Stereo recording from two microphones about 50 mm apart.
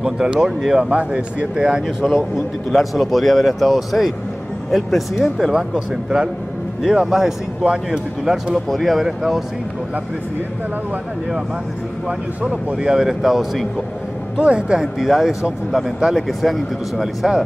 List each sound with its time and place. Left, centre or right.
0.0 s speech: centre
0.9 s speech: right
2.1 s a man's voice: centre
5.5 s speech: centre
8.6 s a man's voice: centre
12.4 s speech: centre
14.3 s speech: centre
14.8 s a man's voice: centre